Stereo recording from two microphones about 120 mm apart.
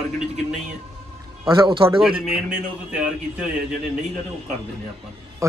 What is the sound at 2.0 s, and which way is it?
A man's voice, 5° right (ahead or behind).